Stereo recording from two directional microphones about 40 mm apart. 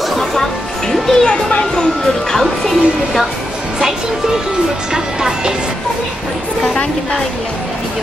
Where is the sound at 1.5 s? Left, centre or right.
Left.